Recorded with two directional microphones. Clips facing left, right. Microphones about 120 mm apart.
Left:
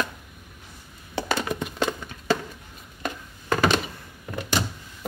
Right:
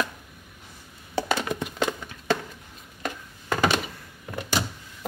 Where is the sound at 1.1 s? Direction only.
Centre (ahead or behind).